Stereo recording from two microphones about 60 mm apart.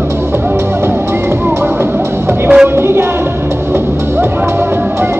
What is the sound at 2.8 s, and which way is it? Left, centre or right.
Music, right.